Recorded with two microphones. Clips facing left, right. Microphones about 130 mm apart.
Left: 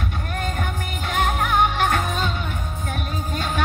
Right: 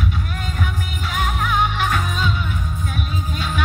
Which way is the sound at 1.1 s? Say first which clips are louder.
Left 2 dB; 50° left (ahead or behind).